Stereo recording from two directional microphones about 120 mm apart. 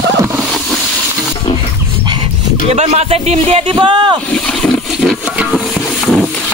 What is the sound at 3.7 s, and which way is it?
Speech, 40° right (ahead or behind).